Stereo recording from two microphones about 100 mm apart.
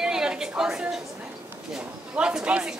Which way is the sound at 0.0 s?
5° right (ahead or behind).